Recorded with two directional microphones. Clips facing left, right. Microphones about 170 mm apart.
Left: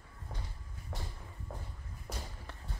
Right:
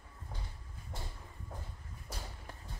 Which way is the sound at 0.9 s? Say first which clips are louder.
Left 2 dB; 75° left (ahead or behind).